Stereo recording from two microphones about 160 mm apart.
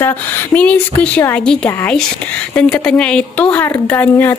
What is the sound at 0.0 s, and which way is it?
A woman's voice, 10° left (ahead or behind).